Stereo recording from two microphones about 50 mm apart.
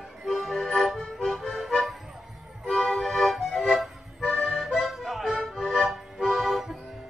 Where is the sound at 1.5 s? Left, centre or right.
Centre.